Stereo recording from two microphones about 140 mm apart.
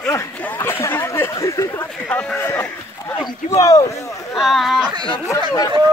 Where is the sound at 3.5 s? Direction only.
25° left (ahead or behind).